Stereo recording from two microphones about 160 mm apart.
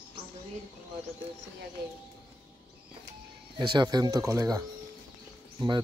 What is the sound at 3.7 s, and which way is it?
Speech, 25° right (ahead or behind).